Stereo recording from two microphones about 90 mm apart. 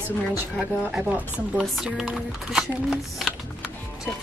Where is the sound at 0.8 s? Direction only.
20° right (ahead or behind).